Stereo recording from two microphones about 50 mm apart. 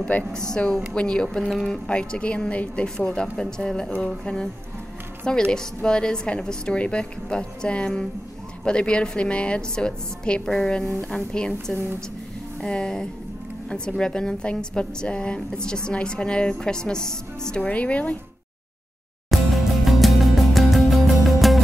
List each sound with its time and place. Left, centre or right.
0.3 s speech: centre
10.4 s speech: centre
11.7 s speech: left
17.6 s speech: left
19.3 s music: centre